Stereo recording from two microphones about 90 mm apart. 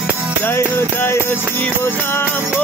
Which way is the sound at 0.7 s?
25° left (ahead or behind).